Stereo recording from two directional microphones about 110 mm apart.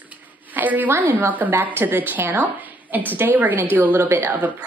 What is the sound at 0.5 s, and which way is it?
A woman's voice, 15° right (ahead or behind).